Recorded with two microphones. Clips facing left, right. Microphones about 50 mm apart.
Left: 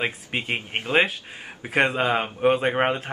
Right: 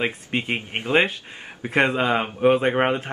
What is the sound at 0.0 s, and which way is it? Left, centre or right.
A man's voice, centre.